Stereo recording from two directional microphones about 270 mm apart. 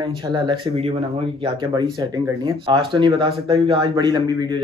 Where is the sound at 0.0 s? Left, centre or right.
Centre.